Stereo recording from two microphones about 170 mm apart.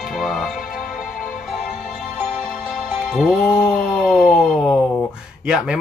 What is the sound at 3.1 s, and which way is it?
Speech, centre (ahead or behind).